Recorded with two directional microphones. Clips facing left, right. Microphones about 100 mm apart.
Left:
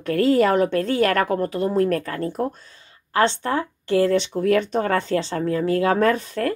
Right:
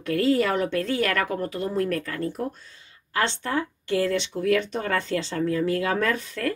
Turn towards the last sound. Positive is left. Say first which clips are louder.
# left 6 dB
turn(degrees=35)  # may be behind; listen again after turning